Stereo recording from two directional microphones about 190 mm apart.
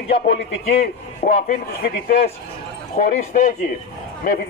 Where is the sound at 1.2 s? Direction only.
40° left (ahead or behind).